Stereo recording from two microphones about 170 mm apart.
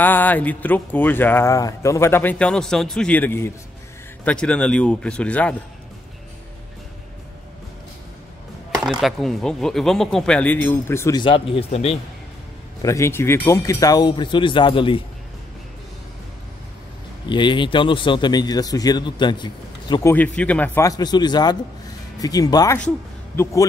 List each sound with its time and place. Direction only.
0.0 s speech: 10° left (ahead or behind)
9.0 s speech: centre (ahead or behind); by 12.0 s 35° left (ahead or behind)
12.8 s a man's voice: 15° left (ahead or behind)
17.3 s a man's voice: 30° left (ahead or behind)
20.1 s a man's voice: 10° left (ahead or behind)